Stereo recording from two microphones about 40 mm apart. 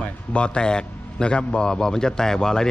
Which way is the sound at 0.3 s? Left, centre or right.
Left.